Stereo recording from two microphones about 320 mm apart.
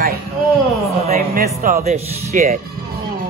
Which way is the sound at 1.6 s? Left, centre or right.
Right.